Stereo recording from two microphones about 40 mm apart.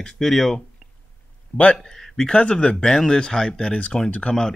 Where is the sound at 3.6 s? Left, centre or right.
Left.